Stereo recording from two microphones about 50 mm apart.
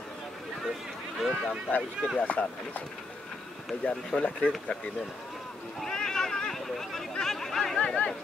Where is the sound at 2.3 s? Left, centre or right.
Left.